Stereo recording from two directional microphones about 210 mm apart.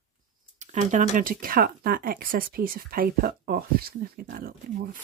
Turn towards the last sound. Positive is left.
turn(degrees=-45)  # may be behind; listen again after turning